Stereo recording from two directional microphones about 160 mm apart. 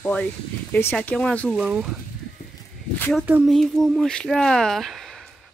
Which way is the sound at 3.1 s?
5° right (ahead or behind).